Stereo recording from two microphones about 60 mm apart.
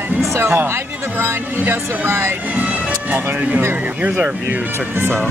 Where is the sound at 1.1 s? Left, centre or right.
Right.